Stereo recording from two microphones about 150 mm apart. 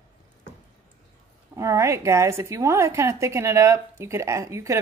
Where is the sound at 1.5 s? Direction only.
20° right (ahead or behind).